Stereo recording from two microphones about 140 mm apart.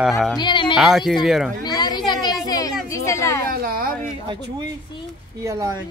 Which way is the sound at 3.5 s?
90° right.